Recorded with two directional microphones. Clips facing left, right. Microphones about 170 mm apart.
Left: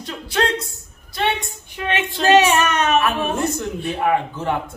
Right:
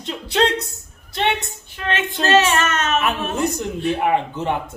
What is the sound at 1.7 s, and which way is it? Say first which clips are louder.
Speech: even; 15° left (ahead or behind).